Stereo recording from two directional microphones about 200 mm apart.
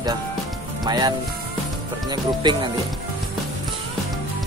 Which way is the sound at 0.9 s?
20° right (ahead or behind).